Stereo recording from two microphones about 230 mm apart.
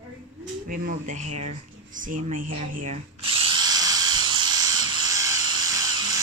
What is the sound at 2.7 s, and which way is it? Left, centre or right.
Drill, right.